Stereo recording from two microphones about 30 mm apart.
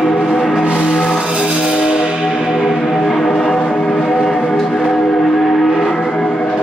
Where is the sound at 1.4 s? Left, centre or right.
Centre.